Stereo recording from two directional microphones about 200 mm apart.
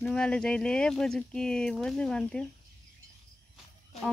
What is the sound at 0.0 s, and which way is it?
Speech, 5° left (ahead or behind).